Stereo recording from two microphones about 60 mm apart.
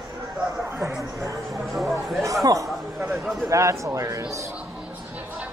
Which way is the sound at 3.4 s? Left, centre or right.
Right.